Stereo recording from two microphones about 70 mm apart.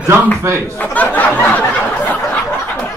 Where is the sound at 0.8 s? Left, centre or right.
Left.